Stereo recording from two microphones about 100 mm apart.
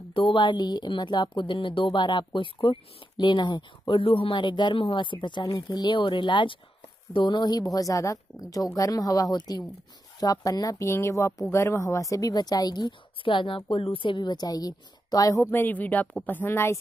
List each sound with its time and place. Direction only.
0.1 s speech: 55° left (ahead or behind)
7.7 s a woman's voice: 35° left (ahead or behind)
15.5 s a woman's voice: 15° left (ahead or behind)